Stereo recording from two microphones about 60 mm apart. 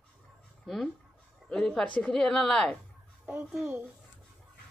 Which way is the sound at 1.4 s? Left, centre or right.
Centre.